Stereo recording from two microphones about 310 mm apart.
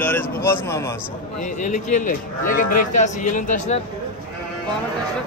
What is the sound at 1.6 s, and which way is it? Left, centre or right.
Speech, left.